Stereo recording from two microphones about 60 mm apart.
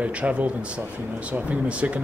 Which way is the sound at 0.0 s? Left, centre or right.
Right.